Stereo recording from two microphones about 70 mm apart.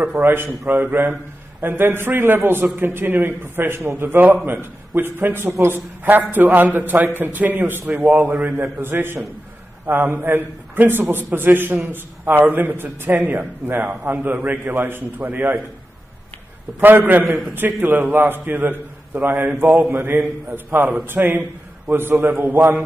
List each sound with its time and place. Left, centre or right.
0.0 s a man's voice: right
16.8 s a man's voice: right